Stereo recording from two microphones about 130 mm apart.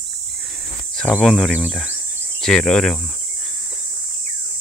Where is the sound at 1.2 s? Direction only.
Centre (ahead or behind).